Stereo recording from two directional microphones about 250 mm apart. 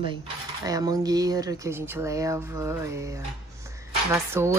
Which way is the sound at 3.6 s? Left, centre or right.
Centre.